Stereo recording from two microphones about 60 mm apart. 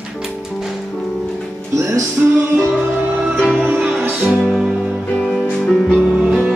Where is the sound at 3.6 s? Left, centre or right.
Right.